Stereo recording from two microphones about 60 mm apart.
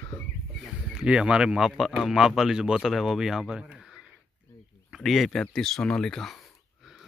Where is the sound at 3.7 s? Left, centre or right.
Centre.